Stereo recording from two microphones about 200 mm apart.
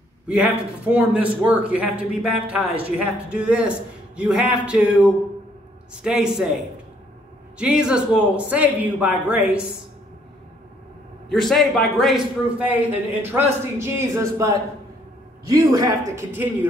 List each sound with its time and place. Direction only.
0.3 s a man's voice: 5° right (ahead or behind)
6.0 s a man's voice: 5° right (ahead or behind)
7.5 s a man's voice: 5° right (ahead or behind)
11.2 s a man's voice: centre (ahead or behind); by 16.3 s 15° right (ahead or behind)